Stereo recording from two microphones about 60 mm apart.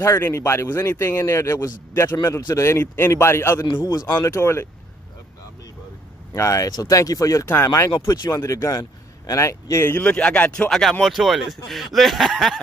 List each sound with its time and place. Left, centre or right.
0.3 s a man's voice: left
3.9 s speech: left
4.4 s a man's voice: left
6.3 s speech: left
7.4 s a man's voice: left
8.2 s speech: left
9.4 s speech: left
9.8 s speech: left
10.7 s speech: centre